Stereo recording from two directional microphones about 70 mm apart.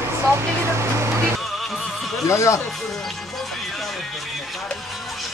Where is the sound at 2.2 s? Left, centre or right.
Left.